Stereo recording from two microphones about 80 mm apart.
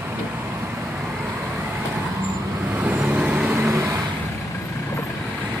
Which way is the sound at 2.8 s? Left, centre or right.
Right.